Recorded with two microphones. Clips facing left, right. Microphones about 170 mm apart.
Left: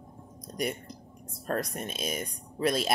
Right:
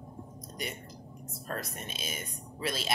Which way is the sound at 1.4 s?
50° left (ahead or behind).